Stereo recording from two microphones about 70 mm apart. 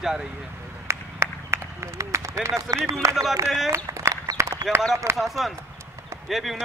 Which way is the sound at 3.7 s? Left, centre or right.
Right.